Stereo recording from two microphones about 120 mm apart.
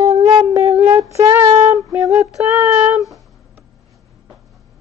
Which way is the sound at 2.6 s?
15° right (ahead or behind).